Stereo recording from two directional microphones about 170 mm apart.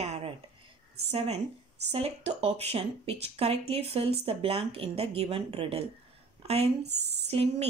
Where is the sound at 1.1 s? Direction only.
35° right (ahead or behind).